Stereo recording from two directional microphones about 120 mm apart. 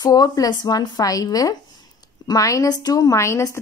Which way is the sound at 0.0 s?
30° left (ahead or behind).